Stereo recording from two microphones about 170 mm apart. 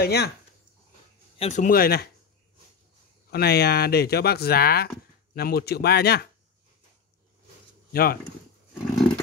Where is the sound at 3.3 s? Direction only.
70° left (ahead or behind).